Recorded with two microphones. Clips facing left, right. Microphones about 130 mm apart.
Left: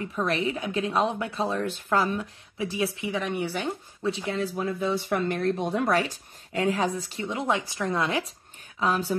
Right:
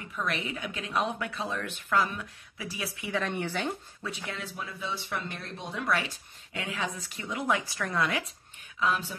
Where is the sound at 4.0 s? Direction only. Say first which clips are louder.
Left 14 dB; 25° left (ahead or behind).